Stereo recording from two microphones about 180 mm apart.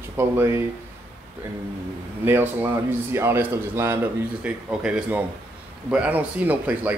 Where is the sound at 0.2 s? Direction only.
15° right (ahead or behind).